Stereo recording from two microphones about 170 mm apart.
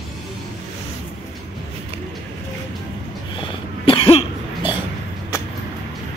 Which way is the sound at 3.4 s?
30° left (ahead or behind).